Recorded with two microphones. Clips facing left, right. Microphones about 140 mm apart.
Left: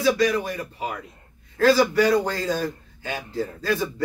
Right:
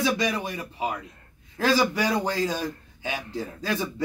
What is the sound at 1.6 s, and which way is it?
A man's voice, 15° right (ahead or behind).